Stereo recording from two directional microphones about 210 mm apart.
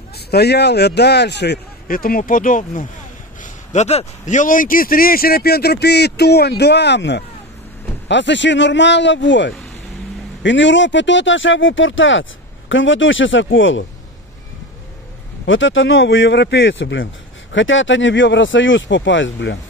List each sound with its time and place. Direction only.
0.3 s a man's voice: 50° left (ahead or behind)
15.4 s speech: 65° left (ahead or behind)